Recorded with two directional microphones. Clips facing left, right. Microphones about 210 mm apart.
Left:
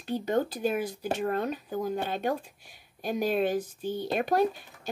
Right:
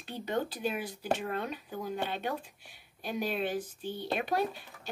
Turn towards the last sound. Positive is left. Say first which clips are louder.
# left 6 dB
turn(degrees=45)  # may be behind; listen again after turning